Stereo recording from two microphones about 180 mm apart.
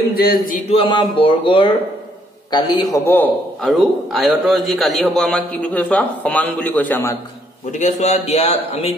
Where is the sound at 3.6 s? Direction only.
Centre (ahead or behind).